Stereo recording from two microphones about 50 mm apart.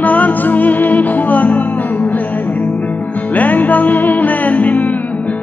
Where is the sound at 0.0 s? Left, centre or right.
Left.